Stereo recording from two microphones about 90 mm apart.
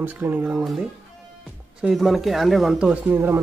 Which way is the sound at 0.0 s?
25° right (ahead or behind).